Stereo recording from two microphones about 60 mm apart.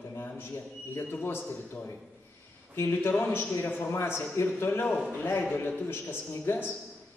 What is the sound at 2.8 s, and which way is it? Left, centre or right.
A man's voice, left.